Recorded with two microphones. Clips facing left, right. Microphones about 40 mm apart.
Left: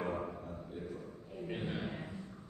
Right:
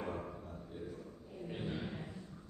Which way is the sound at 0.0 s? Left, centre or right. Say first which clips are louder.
Left 4 dB; left.